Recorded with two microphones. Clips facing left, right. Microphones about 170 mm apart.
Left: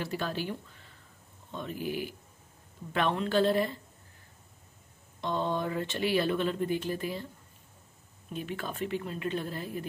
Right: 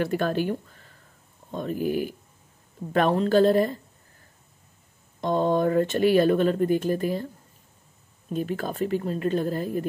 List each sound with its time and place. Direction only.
0.0 s speech: 55° right (ahead or behind)
5.2 s speech: 45° right (ahead or behind)
8.3 s speech: 40° right (ahead or behind)